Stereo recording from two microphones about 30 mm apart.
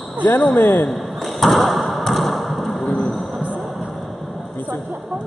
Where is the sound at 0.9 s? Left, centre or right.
Centre.